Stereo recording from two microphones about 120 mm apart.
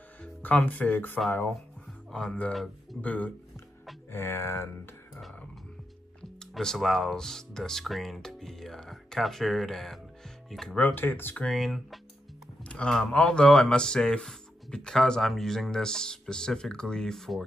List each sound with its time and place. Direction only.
0.2 s speech: 10° left (ahead or behind)
3.0 s speech: 10° left (ahead or behind)
6.4 s speech: 5° left (ahead or behind)
11.0 s speech: 15° left (ahead or behind)
11.4 s speech: centre (ahead or behind)